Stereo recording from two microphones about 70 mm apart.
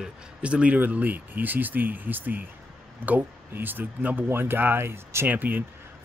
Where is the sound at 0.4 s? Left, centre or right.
Centre.